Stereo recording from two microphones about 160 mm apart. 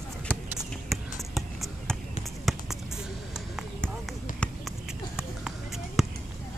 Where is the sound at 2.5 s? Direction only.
Centre (ahead or behind).